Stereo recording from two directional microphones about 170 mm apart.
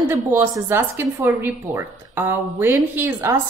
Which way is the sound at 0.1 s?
15° right (ahead or behind).